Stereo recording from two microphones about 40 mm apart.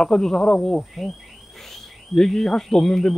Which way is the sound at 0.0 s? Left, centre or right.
Centre.